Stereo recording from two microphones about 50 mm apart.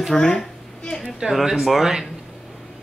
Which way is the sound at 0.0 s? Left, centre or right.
Centre.